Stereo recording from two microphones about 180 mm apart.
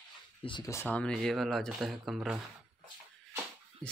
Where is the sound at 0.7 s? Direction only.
10° left (ahead or behind).